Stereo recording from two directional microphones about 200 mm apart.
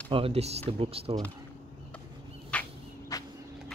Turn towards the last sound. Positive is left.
turn(degrees=10)  # may be behind; listen again after turning